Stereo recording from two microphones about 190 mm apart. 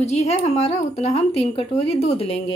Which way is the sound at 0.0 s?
35° left (ahead or behind).